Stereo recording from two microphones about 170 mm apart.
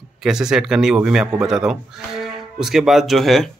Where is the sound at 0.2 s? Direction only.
5° right (ahead or behind).